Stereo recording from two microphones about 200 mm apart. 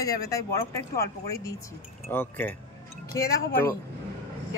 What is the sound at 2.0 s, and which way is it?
Speech, 10° left (ahead or behind).